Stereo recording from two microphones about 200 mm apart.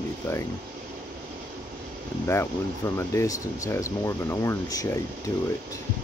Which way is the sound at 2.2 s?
15° left (ahead or behind).